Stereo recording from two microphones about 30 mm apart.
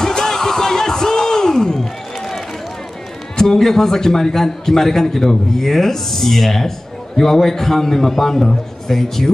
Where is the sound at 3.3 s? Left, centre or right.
Centre.